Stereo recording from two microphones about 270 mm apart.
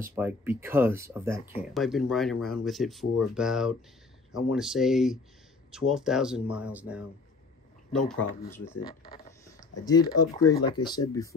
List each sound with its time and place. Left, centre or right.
0.0 s speech: centre